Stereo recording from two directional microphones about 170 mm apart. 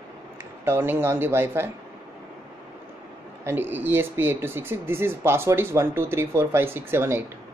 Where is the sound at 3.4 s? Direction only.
10° right (ahead or behind).